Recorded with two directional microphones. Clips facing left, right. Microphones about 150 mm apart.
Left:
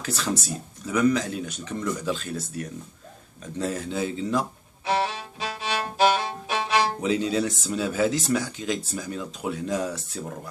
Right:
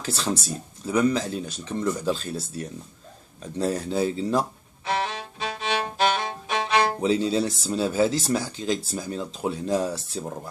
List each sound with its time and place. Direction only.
0.0 s speech: 30° right (ahead or behind)
4.8 s music: 5° left (ahead or behind)
7.0 s speech: 30° right (ahead or behind)